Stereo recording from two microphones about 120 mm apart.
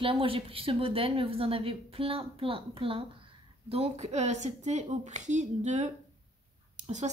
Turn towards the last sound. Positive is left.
turn(degrees=-85)